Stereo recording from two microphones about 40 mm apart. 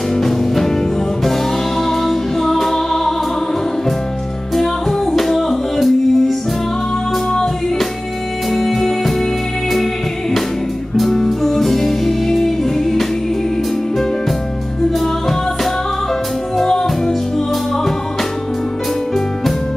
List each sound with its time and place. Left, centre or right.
0.2 s music: centre
4.6 s music: centre
8.5 s music: centre
11.0 s music: centre
16.5 s music: centre